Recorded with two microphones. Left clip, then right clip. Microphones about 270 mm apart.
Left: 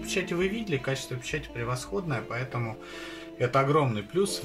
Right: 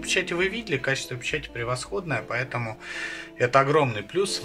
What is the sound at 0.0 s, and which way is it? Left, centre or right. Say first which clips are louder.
Speech: right 4 dB; right.